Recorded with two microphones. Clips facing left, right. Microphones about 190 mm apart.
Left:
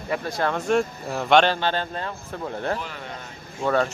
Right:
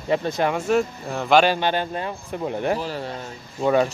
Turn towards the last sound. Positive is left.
turn(degrees=-15)  # may be behind; listen again after turning